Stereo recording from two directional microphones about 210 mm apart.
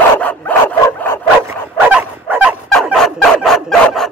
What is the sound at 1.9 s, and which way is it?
Fowl, 5° right (ahead or behind).